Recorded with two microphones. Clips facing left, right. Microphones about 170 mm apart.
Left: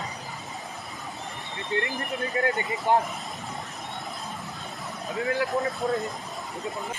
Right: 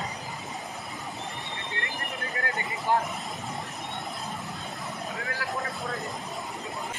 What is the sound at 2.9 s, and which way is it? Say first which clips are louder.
Speech: left 3 dB; 20° left (ahead or behind).